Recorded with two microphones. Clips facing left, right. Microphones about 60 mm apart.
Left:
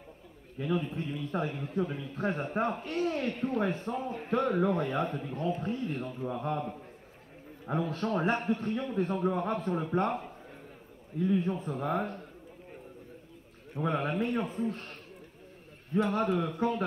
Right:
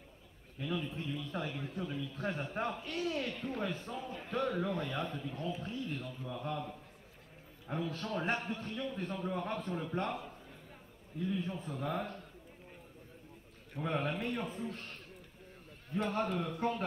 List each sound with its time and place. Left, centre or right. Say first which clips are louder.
0.6 s a man's voice: left 6 dB; left
13.7 s a man's voice: left 5 dB; left